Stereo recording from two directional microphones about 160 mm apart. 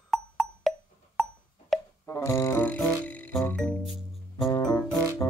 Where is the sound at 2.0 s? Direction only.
20° left (ahead or behind).